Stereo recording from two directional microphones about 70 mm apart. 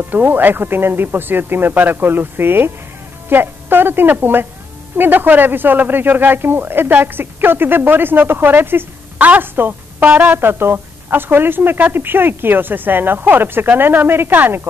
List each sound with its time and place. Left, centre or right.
0.0 s a woman's voice: right